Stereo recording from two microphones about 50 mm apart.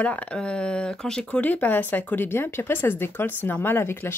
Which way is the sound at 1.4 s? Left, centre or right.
Left.